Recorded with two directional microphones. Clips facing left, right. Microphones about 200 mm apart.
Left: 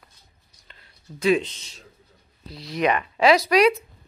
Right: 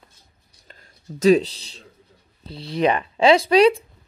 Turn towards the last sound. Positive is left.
turn(degrees=-30)  # may be behind; listen again after turning